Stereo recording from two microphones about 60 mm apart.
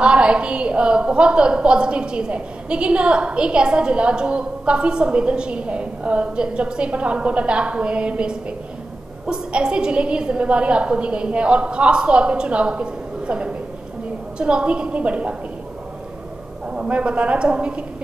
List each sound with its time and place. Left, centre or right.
0.0 s a woman's voice: centre
16.7 s a woman's voice: centre